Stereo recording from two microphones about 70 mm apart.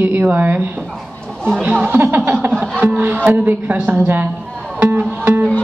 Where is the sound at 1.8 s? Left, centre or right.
Right.